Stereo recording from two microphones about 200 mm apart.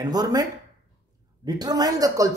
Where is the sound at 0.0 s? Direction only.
20° right (ahead or behind).